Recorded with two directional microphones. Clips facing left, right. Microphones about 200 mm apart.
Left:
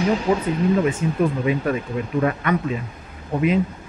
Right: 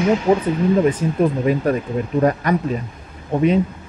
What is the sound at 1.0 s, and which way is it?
Speech, 40° right (ahead or behind).